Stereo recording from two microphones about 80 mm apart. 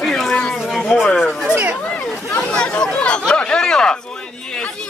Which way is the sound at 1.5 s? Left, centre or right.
Right.